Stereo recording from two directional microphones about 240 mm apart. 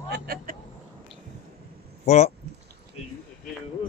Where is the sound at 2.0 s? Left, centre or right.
Left.